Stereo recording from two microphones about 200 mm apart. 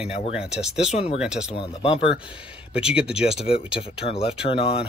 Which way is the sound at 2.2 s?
5° right (ahead or behind).